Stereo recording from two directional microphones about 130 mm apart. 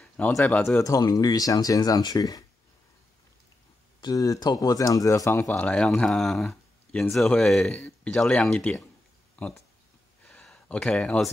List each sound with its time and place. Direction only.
0.0 s speech: 5° left (ahead or behind)
0.6 s speech: 20° left (ahead or behind)
4.0 s speech: 25° left (ahead or behind); by 9.6 s 10° left (ahead or behind)
10.2 s a sound: 5° left (ahead or behind)